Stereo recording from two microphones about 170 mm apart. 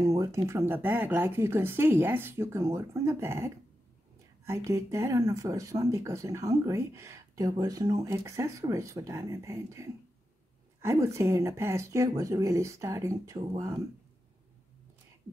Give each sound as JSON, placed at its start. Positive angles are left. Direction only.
{"t": 0.2, "sound": "speech", "side_deg": -15}
{"t": 4.6, "sound": "speech", "side_deg": -20}